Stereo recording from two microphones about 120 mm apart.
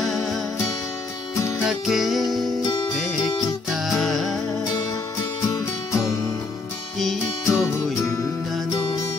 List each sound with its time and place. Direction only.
0.0 s music: centre (ahead or behind)
1.6 s music: 5° right (ahead or behind)
3.7 s music: centre (ahead or behind)
5.5 s music: 25° left (ahead or behind)
7.0 s music: centre (ahead or behind)